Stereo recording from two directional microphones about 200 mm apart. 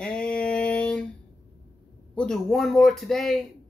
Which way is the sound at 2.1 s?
5° left (ahead or behind).